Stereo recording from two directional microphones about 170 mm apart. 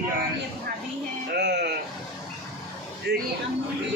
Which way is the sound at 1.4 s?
80° right.